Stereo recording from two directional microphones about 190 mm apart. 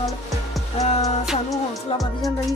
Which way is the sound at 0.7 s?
35° left (ahead or behind).